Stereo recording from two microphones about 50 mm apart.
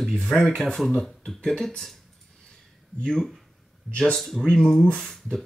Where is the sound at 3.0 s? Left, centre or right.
Centre.